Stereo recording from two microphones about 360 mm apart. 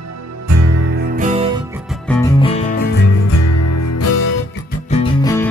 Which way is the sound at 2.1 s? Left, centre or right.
Centre.